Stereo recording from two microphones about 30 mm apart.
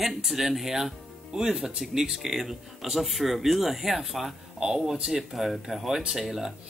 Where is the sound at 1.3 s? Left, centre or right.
Centre.